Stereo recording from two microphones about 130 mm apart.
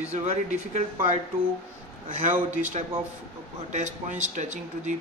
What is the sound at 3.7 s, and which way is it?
A man's voice, 65° right (ahead or behind).